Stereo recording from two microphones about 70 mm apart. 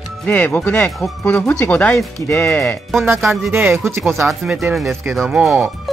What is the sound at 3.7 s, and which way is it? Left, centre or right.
Speech, right.